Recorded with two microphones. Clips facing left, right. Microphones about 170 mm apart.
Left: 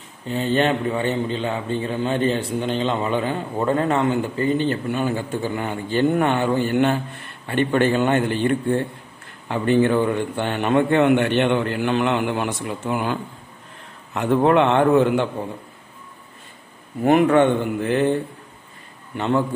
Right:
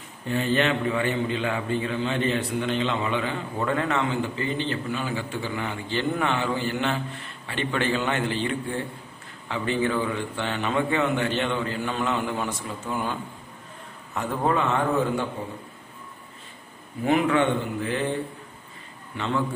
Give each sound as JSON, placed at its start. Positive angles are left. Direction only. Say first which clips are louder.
{"t": 0.3, "sound": "a man's voice", "louder": "left 3 dB", "side_deg": 25}
{"t": 17.0, "sound": "a man's voice", "louder": "left 6 dB", "side_deg": 50}
{"t": 19.1, "sound": "a man's voice", "louder": "left 6 dB", "side_deg": 45}